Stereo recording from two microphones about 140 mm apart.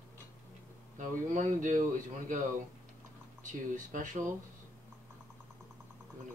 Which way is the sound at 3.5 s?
65° right (ahead or behind).